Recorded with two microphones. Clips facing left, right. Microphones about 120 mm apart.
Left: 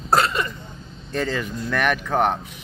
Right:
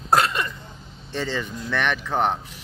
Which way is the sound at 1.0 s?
Centre (ahead or behind).